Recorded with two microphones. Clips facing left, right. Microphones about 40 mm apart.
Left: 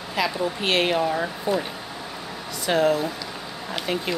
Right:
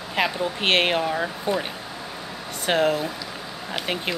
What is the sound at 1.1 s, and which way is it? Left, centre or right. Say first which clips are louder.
Speech: even; centre.